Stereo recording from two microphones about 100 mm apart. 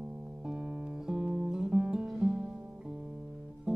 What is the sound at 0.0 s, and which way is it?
Music, 15° right (ahead or behind).